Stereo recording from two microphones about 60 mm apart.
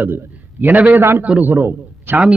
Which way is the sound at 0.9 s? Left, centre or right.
Right.